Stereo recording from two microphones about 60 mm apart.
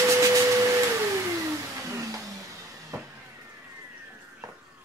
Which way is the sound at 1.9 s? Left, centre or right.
Right.